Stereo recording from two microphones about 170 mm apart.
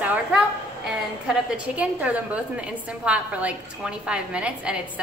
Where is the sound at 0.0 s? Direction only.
10° right (ahead or behind).